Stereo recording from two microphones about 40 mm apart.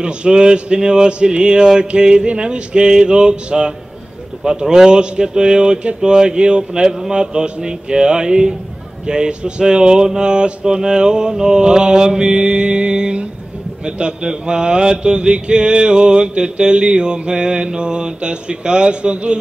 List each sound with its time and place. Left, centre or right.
0.0 s mantra: right